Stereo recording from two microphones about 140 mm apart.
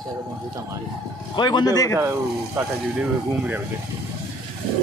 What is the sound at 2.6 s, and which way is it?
Speech, 10° right (ahead or behind).